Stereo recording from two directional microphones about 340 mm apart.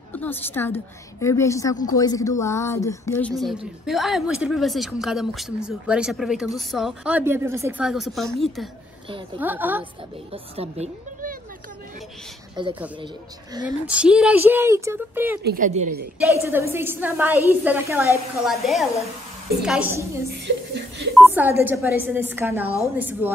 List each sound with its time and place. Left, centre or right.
0.1 s a woman's voice: centre
10.3 s a woman's voice: centre
12.5 s speech: centre
15.4 s a woman's voice: right
16.3 s speech: centre
20.2 s speech: right
21.1 s speech: centre